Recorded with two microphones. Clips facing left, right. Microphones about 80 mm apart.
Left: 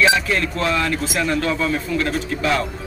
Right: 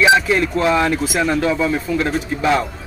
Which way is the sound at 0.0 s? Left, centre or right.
Centre.